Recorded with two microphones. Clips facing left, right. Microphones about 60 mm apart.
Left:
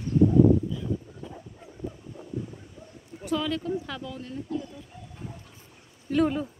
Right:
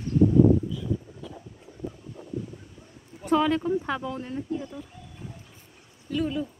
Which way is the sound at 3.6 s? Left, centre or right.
Right.